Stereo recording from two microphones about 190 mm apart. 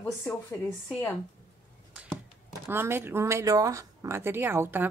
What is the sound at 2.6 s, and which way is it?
Speech, 10° right (ahead or behind).